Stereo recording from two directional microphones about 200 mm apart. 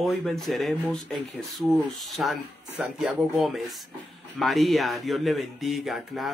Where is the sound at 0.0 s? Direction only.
Centre (ahead or behind).